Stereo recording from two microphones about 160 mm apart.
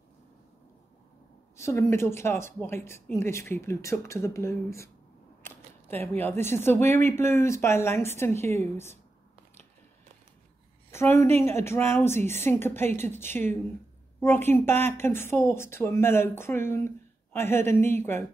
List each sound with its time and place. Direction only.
1.6 s speech: 15° left (ahead or behind)
10.9 s a woman's voice: 15° left (ahead or behind)